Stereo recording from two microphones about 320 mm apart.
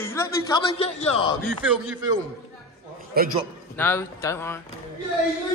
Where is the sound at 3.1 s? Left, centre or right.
Right.